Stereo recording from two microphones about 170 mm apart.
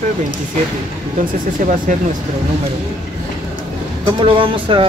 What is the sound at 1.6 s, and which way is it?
Speech, 55° right (ahead or behind).